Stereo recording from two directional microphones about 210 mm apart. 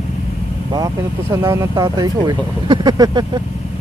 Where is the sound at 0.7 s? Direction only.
15° right (ahead or behind).